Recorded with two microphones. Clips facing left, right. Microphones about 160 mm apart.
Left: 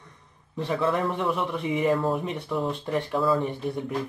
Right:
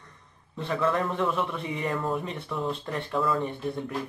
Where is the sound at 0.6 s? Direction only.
20° left (ahead or behind).